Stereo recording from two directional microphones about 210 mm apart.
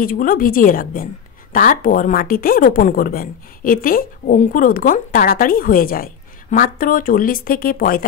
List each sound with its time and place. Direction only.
0.0 s a woman's voice: 40° left (ahead or behind)